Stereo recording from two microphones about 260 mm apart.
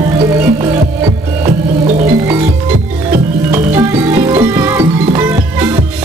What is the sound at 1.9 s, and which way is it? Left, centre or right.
Music, right.